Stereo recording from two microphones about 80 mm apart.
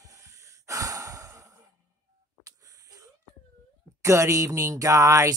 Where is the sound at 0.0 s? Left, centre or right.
Right.